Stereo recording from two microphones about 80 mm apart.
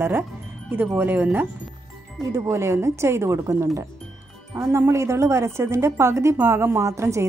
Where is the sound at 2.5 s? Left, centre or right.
Right.